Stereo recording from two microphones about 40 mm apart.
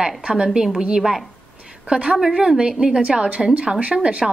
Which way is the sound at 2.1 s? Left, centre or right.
Centre.